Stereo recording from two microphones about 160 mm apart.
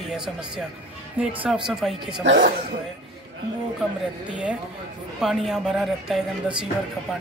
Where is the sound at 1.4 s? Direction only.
Centre (ahead or behind).